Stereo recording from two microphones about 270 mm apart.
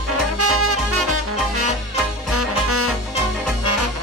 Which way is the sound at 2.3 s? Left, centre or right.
Right.